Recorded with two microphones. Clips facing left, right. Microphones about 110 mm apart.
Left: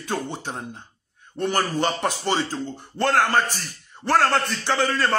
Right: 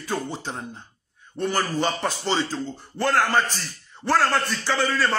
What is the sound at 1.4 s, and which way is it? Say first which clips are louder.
A man's voice: left 1 dB; 20° left (ahead or behind).